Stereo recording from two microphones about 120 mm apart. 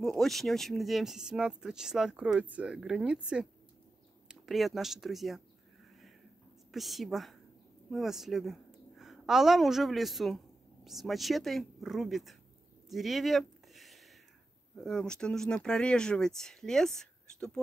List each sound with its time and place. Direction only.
0.0 s speech: centre (ahead or behind)
6.7 s a woman's voice: centre (ahead or behind)
12.9 s a sound: centre (ahead or behind)
14.8 s speech: 5° left (ahead or behind)